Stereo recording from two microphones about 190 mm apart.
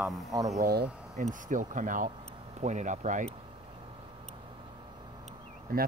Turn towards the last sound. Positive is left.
turn(degrees=-50)  # may be behind; listen again after turning